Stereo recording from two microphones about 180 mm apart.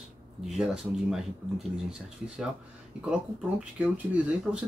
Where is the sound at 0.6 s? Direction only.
Centre (ahead or behind).